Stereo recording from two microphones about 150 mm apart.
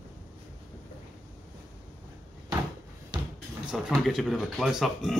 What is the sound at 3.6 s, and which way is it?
Speech, 5° right (ahead or behind).